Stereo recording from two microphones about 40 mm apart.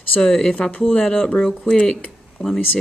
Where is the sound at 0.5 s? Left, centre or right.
Left.